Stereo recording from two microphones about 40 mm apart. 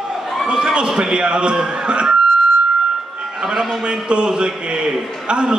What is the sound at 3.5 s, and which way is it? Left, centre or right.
A man's voice, centre.